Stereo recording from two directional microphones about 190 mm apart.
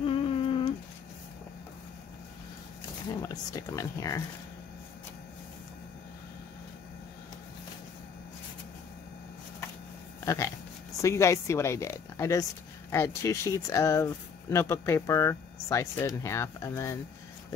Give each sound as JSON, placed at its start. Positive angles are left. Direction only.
{"t": 0.0, "sound": "humming", "side_deg": 30}
{"t": 3.2, "sound": "speech", "side_deg": 15}
{"t": 10.2, "sound": "speech", "side_deg": 15}